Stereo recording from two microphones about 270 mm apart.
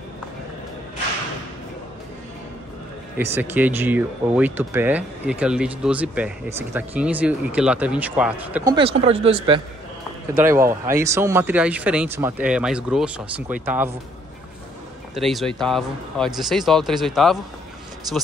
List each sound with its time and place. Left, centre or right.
3.3 s speech: centre
8.7 s speech: right
10.3 s speech: centre
15.1 s speech: centre